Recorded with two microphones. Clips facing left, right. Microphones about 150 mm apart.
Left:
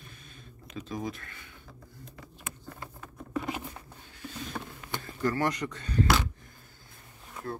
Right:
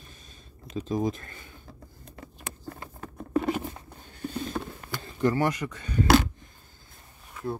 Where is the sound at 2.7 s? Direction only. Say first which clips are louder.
Right 4 dB; 40° right (ahead or behind).